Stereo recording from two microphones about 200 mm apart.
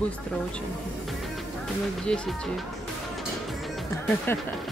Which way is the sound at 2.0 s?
5° left (ahead or behind).